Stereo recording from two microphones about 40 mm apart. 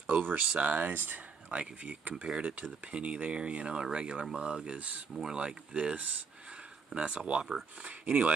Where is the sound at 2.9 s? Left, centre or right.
Right.